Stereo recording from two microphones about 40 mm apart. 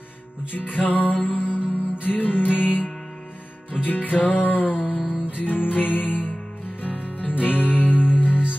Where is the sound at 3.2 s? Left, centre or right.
Left.